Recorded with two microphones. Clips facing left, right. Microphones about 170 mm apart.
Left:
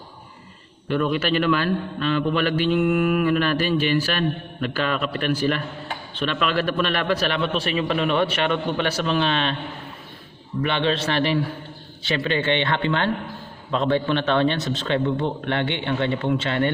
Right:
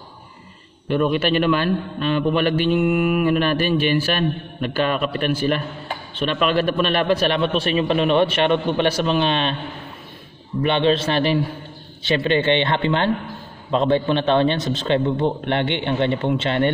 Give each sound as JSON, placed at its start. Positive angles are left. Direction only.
{"t": 0.8, "sound": "a man's voice", "side_deg": -20}
{"t": 10.6, "sound": "a man's voice", "side_deg": -20}